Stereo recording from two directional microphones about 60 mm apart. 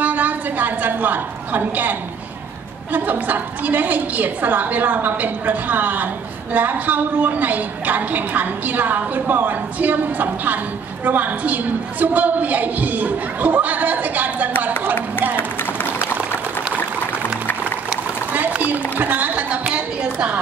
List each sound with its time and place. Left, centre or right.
0.0 s a sound: right
2.9 s a woman's voice: right
18.3 s a woman's voice: right